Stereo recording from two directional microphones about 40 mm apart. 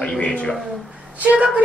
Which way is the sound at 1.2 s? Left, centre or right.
Right.